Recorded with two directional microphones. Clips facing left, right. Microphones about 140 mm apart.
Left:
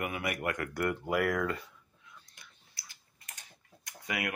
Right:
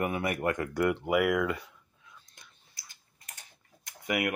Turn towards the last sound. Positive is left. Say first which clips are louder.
# right 6 dB
turn(degrees=-20)  # may be behind; listen again after turning